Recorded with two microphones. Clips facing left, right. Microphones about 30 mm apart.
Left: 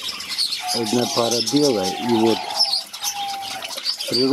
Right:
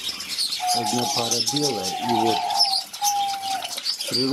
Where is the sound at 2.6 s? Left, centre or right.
Centre.